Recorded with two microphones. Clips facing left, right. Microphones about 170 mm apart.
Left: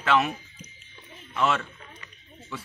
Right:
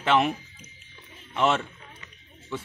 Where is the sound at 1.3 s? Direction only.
25° right (ahead or behind).